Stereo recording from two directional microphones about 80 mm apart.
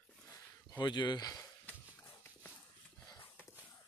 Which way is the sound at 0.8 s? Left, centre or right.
Left.